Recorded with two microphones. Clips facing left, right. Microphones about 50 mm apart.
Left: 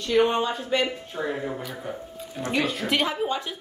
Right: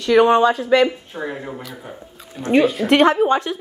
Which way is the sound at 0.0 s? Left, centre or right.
Right.